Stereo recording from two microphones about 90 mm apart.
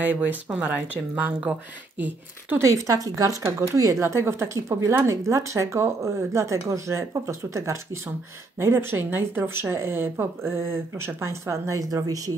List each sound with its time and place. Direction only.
0.0 s speech: 20° right (ahead or behind)
2.6 s speech: 35° right (ahead or behind)